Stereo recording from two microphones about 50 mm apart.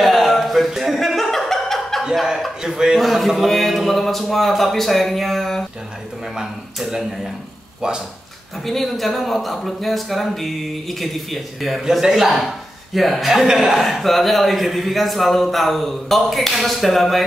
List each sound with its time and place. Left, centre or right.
0.0 s a sound: centre
2.6 s a man's voice: centre
3.0 s a man's voice: centre
6.3 s a man's voice: centre
7.8 s a man's voice: centre
8.6 s a man's voice: centre
12.0 s a man's voice: centre